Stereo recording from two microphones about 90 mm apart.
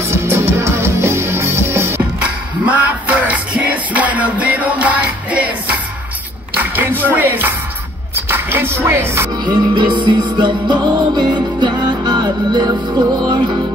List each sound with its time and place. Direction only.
0.0 s music: 30° right (ahead or behind)
2.6 s music: 15° right (ahead or behind)
6.5 s speech: 20° right (ahead or behind)
8.3 s music: 25° right (ahead or behind)
9.4 s music: 55° right (ahead or behind)